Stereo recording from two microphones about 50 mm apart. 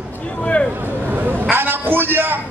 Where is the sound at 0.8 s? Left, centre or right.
Right.